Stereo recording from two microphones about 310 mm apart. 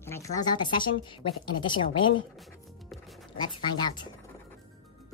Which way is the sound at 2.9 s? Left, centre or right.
Centre.